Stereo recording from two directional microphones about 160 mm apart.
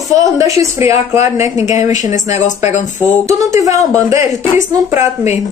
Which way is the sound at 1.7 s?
50° left (ahead or behind).